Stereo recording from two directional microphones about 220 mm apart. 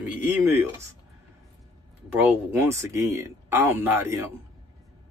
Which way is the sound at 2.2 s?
10° right (ahead or behind).